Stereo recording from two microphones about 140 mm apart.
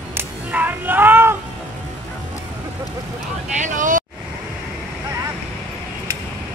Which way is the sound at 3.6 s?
65° right (ahead or behind).